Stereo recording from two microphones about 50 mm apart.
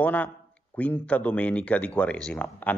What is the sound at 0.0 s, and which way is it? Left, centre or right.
Speech, left.